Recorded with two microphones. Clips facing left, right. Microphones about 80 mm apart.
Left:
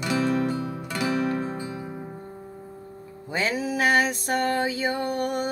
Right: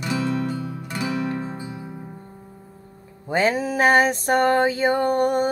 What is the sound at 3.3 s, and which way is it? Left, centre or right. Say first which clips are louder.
Music: right 6 dB; right.